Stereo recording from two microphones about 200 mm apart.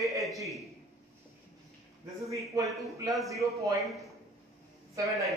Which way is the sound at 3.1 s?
Centre (ahead or behind).